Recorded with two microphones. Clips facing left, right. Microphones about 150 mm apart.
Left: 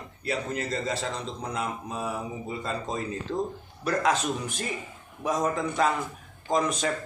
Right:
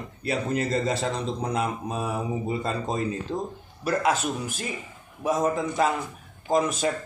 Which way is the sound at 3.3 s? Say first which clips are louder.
Left 1 dB; 30° right (ahead or behind).